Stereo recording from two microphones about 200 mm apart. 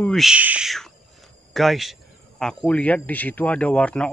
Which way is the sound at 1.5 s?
Centre (ahead or behind).